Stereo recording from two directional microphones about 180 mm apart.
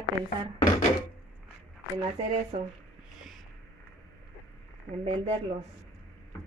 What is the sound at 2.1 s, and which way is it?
Speech, 35° right (ahead or behind).